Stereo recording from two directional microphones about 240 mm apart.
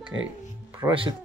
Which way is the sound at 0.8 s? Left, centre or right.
Centre.